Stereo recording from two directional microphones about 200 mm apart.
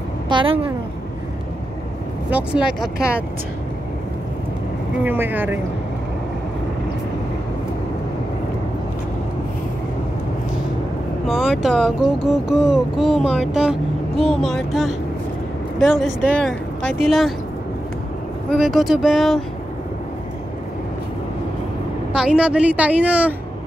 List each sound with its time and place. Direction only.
0.3 s a woman's voice: 25° right (ahead or behind)
2.3 s speech: 5° right (ahead or behind)
5.0 s a woman's voice: 10° right (ahead or behind)
11.2 s speech: centre (ahead or behind)
18.5 s speech: centre (ahead or behind)
22.1 s a woman's voice: 5° right (ahead or behind)